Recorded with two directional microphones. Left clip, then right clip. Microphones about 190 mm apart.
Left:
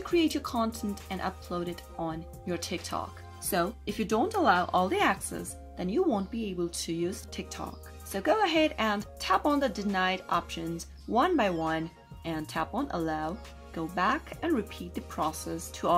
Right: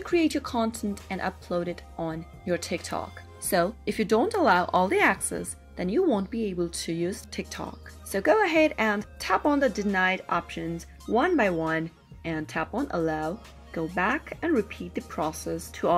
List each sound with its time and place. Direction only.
0.0 s speech: 20° right (ahead or behind)